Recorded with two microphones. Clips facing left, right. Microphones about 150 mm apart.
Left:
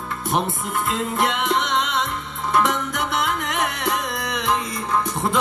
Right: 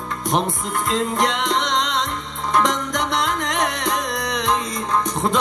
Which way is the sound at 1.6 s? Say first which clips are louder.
Right 1 dB; 35° right (ahead or behind).